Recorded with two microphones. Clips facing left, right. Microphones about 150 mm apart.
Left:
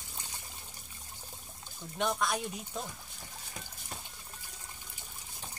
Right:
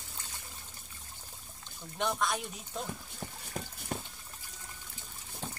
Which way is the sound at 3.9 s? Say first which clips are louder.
Right 8 dB; 55° right (ahead or behind).